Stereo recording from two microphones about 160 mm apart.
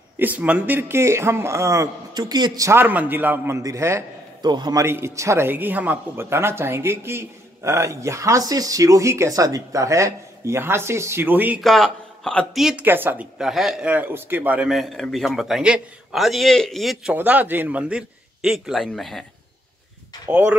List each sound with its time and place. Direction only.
0.2 s a man's voice: 10° right (ahead or behind)
11.6 s speech: centre (ahead or behind)
20.2 s a man's voice: 10° right (ahead or behind)